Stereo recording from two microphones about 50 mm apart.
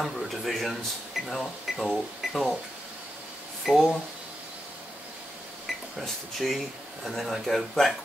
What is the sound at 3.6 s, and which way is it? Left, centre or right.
Speech, centre.